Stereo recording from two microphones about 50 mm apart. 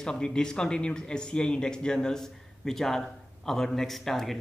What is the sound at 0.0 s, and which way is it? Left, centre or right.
Speech, centre.